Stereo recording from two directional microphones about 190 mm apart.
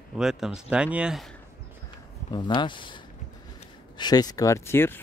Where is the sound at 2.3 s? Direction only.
25° left (ahead or behind).